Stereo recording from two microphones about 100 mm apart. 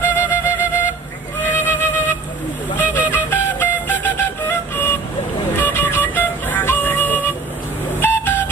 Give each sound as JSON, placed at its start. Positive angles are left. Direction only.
{"t": 0.0, "sound": "flute", "side_deg": 20}
{"t": 1.4, "sound": "music", "side_deg": 20}
{"t": 2.8, "sound": "flute", "side_deg": 20}
{"t": 5.6, "sound": "music", "side_deg": 20}
{"t": 8.0, "sound": "a sound", "side_deg": 20}